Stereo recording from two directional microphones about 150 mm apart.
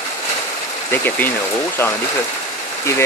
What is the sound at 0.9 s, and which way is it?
Speech, 15° left (ahead or behind).